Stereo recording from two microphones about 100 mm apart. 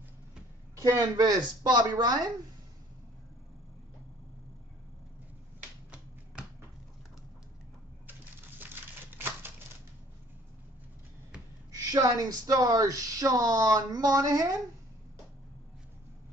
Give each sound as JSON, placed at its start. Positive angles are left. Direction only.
{"t": 0.7, "sound": "speech", "side_deg": -30}
{"t": 8.1, "sound": "typewriter", "side_deg": -20}
{"t": 11.7, "sound": "speech", "side_deg": -35}